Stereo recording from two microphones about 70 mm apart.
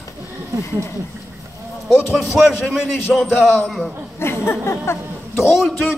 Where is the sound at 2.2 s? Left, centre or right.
Centre.